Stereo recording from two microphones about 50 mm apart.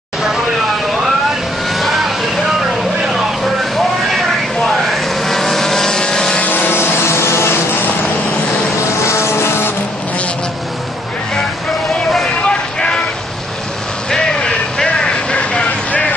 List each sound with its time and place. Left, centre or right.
1.7 s vehicle: centre
4.6 s vehicle: centre
6.5 s vehicle: left
9.0 s vehicle: left
12.4 s vehicle: centre
14.1 s vehicle: centre